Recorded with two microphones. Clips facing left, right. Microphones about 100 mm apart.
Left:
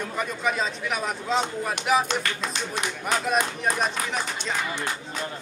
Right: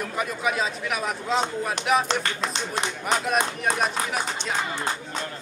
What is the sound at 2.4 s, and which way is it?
Speech, 35° right (ahead or behind).